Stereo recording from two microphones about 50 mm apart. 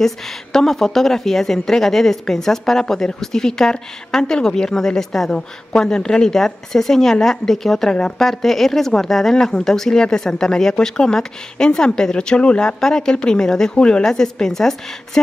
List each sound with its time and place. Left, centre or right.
0.0 s a woman's voice: centre